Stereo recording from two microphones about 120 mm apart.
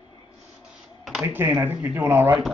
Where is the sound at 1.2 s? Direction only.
15° right (ahead or behind).